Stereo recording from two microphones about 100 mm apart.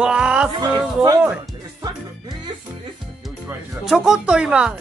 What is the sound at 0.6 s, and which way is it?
Music, 40° right (ahead or behind).